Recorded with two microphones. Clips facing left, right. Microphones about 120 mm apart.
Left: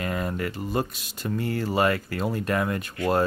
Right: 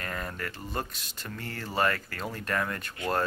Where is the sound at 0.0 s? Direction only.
15° left (ahead or behind).